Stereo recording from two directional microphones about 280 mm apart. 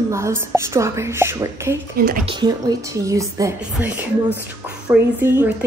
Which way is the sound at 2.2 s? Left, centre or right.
Centre.